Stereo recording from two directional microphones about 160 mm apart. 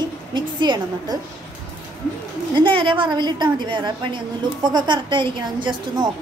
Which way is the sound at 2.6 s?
30° right (ahead or behind).